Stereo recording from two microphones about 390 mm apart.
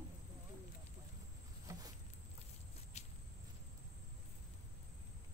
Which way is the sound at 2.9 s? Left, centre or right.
Centre.